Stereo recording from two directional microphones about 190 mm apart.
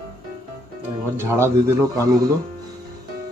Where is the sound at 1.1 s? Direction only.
15° right (ahead or behind).